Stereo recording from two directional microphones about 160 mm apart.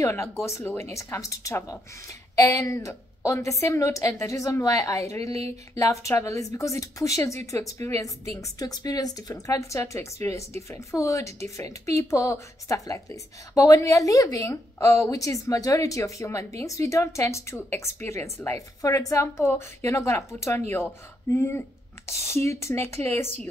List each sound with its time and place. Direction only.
0.0 s a woman's voice: 15° left (ahead or behind)